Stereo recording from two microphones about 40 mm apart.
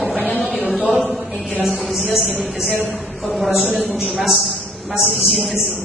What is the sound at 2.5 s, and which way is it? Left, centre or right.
A man's voice, centre.